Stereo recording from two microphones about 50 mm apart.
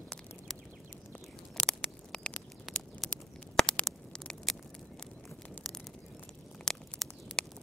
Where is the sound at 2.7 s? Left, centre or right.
Centre.